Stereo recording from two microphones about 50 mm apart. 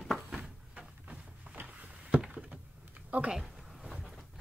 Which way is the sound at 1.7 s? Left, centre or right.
Right.